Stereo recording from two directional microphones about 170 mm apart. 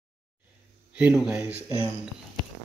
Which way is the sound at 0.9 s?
5° right (ahead or behind).